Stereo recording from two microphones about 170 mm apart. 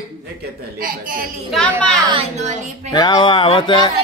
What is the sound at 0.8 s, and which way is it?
Speech, 55° right (ahead or behind).